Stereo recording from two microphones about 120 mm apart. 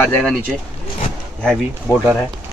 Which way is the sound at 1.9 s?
25° left (ahead or behind).